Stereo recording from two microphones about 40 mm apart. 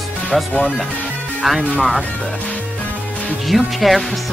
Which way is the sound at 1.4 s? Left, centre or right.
Centre.